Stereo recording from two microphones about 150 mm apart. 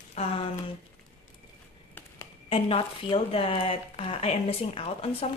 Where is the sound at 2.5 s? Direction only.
35° left (ahead or behind).